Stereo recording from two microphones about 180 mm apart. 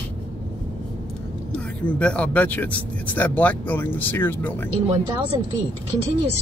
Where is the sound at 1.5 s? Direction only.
5° left (ahead or behind).